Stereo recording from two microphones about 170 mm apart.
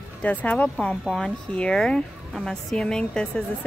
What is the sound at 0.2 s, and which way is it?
A woman's voice, 10° left (ahead or behind).